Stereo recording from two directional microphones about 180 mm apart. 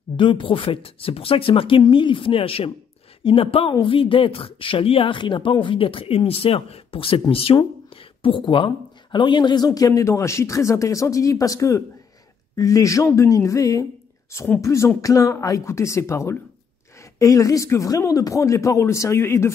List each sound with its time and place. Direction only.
0.2 s a woman's voice: 25° left (ahead or behind)